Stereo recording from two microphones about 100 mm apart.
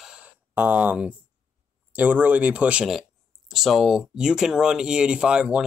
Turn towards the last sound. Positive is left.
turn(degrees=-10)  # may be behind; listen again after turning